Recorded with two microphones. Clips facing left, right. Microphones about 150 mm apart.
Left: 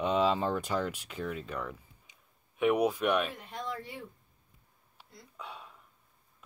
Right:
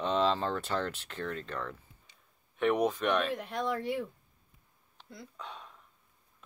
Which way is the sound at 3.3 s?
85° right.